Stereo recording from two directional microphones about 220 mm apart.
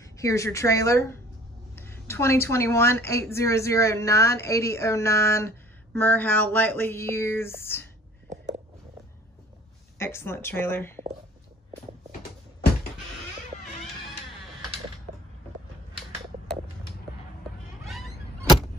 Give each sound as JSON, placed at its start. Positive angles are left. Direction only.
{"t": 0.0, "sound": "speech", "side_deg": 15}
{"t": 9.9, "sound": "speech", "side_deg": 10}
{"t": 17.8, "sound": "a sound", "side_deg": 0}